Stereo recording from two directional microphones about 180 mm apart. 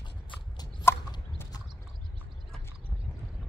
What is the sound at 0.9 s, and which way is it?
Chicken, 15° left (ahead or behind).